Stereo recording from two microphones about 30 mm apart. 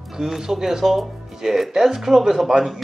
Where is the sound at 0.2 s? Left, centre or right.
Centre.